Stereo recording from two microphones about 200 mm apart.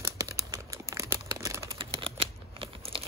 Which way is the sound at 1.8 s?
25° right (ahead or behind).